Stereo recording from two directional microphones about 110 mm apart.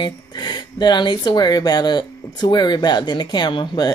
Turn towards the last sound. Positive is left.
turn(degrees=40)  # may be behind; listen again after turning